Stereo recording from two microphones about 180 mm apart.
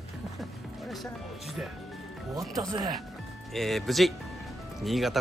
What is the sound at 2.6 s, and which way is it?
Speech, 20° right (ahead or behind).